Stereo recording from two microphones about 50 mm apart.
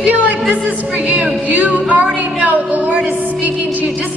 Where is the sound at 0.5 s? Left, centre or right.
Right.